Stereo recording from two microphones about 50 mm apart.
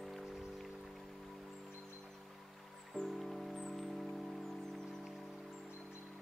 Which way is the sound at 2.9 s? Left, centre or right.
Centre.